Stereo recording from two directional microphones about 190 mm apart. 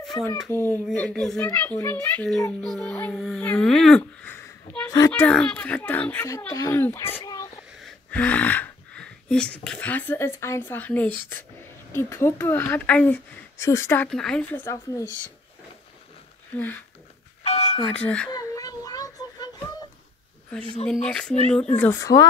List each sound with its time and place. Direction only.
0.3 s speech: 15° left (ahead or behind)
16.5 s speech: 10° left (ahead or behind)
17.4 s doorbell: 35° left (ahead or behind)
17.8 s speech: 5° left (ahead or behind)
18.3 s a sound: 20° left (ahead or behind)
20.8 s speech: 5° left (ahead or behind)